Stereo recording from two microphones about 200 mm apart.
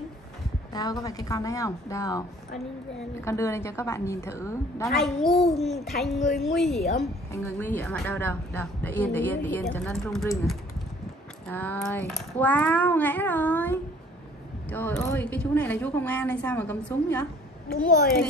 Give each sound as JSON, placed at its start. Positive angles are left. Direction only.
{"t": 0.7, "sound": "a woman's voice", "side_deg": 20}
{"t": 4.8, "sound": "a woman's voice", "side_deg": 0}
{"t": 11.4, "sound": "a woman's voice", "side_deg": 10}